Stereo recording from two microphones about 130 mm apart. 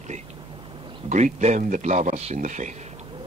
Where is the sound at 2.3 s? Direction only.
70° right (ahead or behind).